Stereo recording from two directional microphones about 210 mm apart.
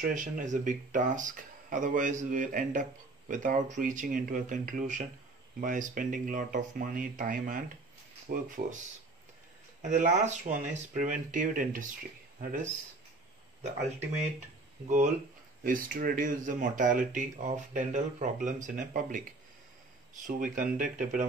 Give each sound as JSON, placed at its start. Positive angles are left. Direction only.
{"t": 0.0, "sound": "speech", "side_deg": -40}
{"t": 9.8, "sound": "speech", "side_deg": -35}
{"t": 14.9, "sound": "speech", "side_deg": -35}
{"t": 20.2, "sound": "speech", "side_deg": -40}